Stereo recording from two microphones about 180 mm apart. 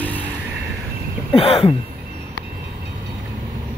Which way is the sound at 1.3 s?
30° left (ahead or behind).